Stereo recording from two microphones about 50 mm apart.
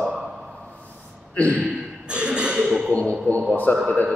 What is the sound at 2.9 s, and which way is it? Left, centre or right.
Speech, left.